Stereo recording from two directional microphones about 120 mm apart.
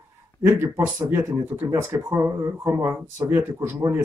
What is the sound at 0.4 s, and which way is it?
Speech, 20° right (ahead or behind).